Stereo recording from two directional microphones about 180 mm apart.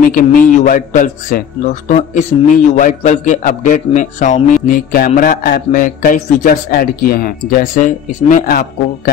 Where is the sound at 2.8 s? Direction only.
45° left (ahead or behind).